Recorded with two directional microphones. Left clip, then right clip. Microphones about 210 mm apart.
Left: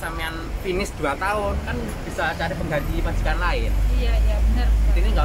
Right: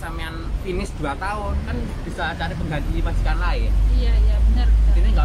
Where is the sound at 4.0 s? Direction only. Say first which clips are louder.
Left 3 dB; 20° right (ahead or behind).